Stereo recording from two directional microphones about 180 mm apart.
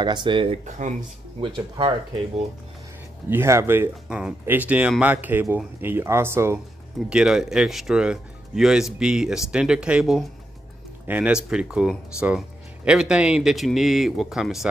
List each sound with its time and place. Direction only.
0.0 s speech: 25° right (ahead or behind)
0.7 s speech: 40° right (ahead or behind)
1.8 s speech: 30° right (ahead or behind)
3.3 s speech: 15° right (ahead or behind)